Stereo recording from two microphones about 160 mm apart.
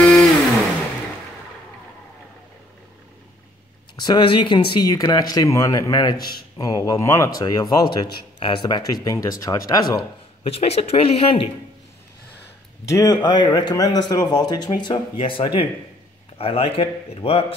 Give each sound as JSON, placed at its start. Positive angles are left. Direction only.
{"t": 0.0, "sound": "vehicle", "side_deg": 5}
{"t": 4.0, "sound": "a man's voice", "side_deg": 30}
{"t": 10.4, "sound": "speech", "side_deg": 40}
{"t": 12.8, "sound": "a man's voice", "side_deg": 20}